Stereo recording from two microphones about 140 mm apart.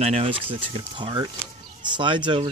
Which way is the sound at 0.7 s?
35° right (ahead or behind).